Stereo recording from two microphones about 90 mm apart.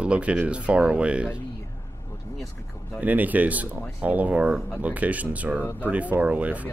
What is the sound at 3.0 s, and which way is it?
Speech, 20° right (ahead or behind).